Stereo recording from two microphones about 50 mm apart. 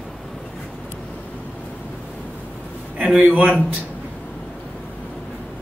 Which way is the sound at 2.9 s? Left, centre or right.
Right.